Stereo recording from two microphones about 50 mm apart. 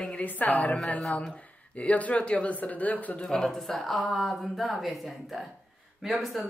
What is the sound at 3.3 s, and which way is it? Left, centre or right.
A woman's voice, centre.